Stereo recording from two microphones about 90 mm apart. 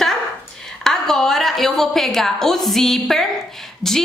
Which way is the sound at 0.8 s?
5° left (ahead or behind).